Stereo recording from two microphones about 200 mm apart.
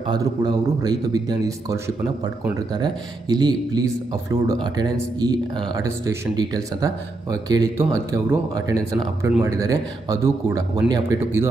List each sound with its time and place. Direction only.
0.0 s speech: 20° right (ahead or behind)